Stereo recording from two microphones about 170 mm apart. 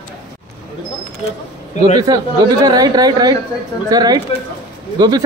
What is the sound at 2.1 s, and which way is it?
Speech, 20° right (ahead or behind).